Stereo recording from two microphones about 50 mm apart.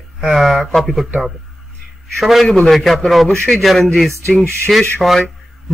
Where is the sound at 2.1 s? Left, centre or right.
Centre.